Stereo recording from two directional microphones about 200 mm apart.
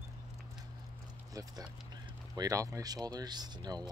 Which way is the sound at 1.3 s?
20° right (ahead or behind).